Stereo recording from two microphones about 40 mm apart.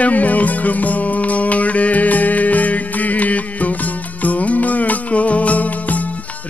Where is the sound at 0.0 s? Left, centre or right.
Left.